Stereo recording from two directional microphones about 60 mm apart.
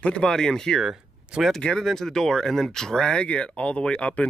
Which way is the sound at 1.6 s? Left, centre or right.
Centre.